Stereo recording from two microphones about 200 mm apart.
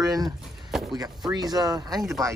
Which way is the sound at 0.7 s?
Centre (ahead or behind).